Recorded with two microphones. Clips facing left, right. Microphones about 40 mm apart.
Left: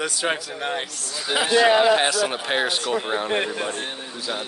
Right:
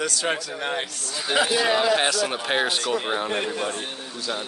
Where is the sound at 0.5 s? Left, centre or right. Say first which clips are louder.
Even; centre.